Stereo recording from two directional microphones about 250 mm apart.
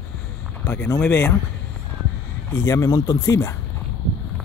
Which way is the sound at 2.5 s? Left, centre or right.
Centre.